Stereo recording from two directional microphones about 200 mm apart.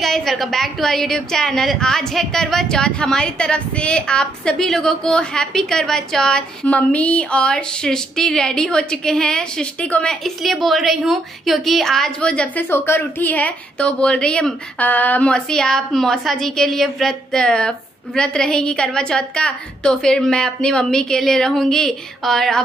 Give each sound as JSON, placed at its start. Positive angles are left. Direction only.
{"t": 0.0, "sound": "a woman's voice", "side_deg": 0}